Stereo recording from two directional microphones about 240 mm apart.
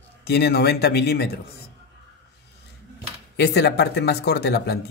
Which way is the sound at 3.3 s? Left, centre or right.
Left.